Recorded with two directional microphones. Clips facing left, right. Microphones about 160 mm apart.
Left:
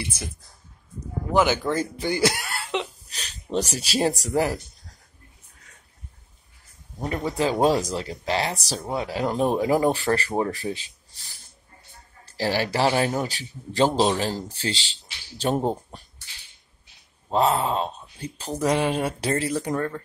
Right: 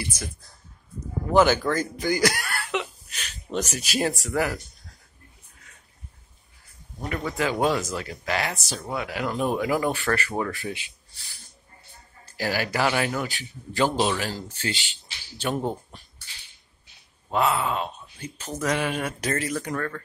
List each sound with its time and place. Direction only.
1.3 s speech: 15° left (ahead or behind)
1.8 s a sound: 30° left (ahead or behind)
7.0 s speech: 30° left (ahead or behind)
17.3 s speech: 30° left (ahead or behind)